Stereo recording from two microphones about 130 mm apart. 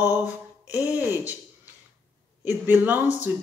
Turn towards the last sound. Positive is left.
turn(degrees=-15)  # may be behind; listen again after turning